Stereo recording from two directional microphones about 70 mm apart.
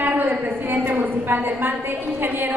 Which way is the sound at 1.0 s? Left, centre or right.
Right.